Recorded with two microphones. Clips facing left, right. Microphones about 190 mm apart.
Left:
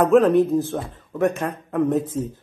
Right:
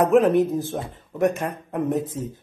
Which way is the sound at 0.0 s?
15° right (ahead or behind).